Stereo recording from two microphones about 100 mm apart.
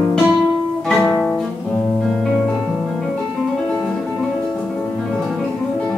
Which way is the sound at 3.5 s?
10° left (ahead or behind).